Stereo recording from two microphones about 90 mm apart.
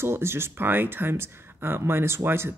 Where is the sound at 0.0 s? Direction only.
25° right (ahead or behind).